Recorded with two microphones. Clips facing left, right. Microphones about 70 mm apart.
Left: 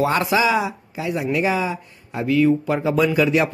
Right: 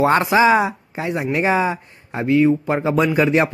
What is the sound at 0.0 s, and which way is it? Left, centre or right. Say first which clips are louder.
Speech: right 4 dB; right.